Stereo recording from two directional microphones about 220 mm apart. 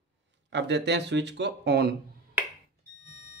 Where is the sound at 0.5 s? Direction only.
50° right (ahead or behind).